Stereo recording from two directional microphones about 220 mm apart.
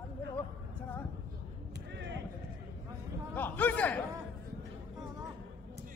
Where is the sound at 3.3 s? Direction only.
10° left (ahead or behind).